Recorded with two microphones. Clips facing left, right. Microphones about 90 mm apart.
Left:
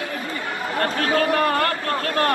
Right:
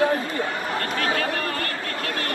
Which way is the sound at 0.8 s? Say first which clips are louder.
Left 7 dB; 40° left (ahead or behind).